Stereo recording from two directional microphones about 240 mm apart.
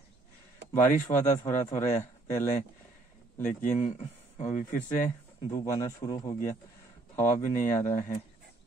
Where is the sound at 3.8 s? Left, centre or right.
Left.